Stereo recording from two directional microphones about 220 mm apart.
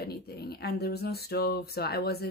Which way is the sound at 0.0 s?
45° left (ahead or behind).